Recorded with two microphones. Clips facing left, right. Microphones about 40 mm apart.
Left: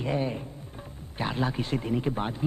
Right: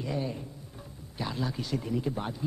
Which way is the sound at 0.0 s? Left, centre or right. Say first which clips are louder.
Left 4 dB; left.